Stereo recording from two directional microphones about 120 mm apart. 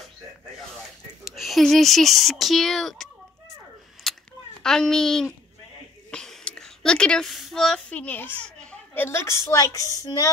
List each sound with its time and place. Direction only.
1.3 s speech: centre (ahead or behind)
4.1 s a sound: 5° left (ahead or behind)
4.6 s a woman's voice: 5° left (ahead or behind); by 10.3 s 30° left (ahead or behind)